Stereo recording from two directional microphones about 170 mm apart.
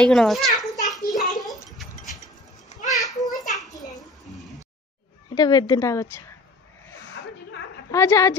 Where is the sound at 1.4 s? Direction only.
Centre (ahead or behind).